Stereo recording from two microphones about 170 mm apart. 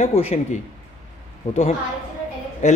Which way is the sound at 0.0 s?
40° left (ahead or behind).